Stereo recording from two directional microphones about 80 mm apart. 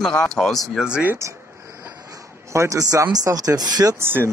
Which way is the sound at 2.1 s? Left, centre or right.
Right.